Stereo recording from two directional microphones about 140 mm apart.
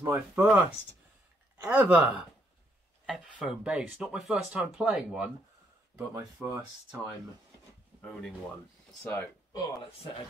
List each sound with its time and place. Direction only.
0.0 s speech: 20° right (ahead or behind)
1.7 s speech: 10° right (ahead or behind)
5.9 s speech: 20° right (ahead or behind)
8.0 s speech: 5° left (ahead or behind)
9.0 s speech: 20° left (ahead or behind)
9.6 s speech: 40° left (ahead or behind)